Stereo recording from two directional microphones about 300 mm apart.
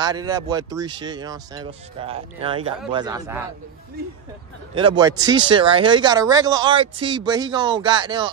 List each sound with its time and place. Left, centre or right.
0.0 s speech: centre
4.7 s speech: centre